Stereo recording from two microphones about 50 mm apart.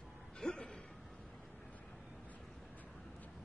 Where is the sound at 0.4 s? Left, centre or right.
Centre.